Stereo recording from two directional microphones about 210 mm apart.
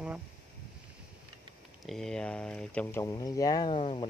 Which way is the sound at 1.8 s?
Centre (ahead or behind).